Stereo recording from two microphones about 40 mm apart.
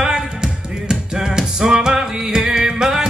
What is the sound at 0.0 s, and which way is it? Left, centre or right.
Music, centre.